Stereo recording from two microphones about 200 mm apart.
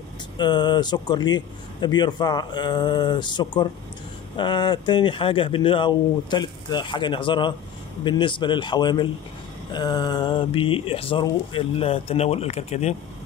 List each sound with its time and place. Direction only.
0.4 s speech: 20° left (ahead or behind)